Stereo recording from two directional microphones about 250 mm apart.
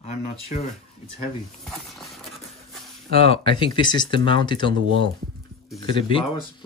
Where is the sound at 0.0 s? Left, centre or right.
Left.